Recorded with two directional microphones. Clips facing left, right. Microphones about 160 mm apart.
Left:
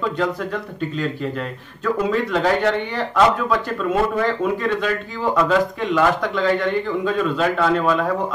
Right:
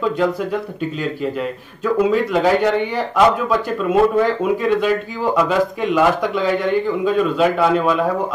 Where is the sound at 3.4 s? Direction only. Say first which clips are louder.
Right 2 dB; 10° right (ahead or behind).